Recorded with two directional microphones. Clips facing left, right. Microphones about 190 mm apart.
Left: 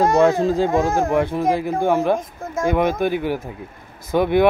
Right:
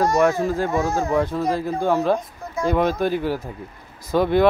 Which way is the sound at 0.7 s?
55° left (ahead or behind).